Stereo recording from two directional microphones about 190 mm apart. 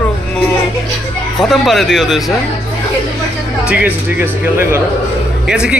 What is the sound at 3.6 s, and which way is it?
Speech, 10° right (ahead or behind).